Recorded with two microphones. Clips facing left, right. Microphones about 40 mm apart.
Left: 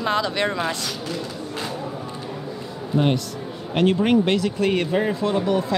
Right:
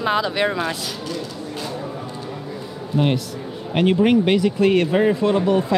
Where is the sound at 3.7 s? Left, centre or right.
Centre.